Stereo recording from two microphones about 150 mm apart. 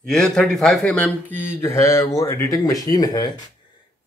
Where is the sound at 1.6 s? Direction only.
20° left (ahead or behind).